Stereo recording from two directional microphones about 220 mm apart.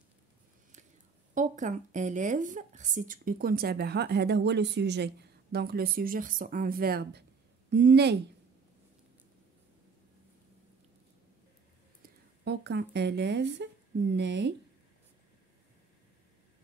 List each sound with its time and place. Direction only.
1.3 s speech: 35° right (ahead or behind)
12.0 s speech: 50° right (ahead or behind)